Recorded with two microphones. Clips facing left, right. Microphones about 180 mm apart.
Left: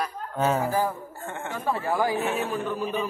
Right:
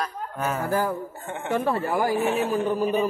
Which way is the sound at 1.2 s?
20° right (ahead or behind).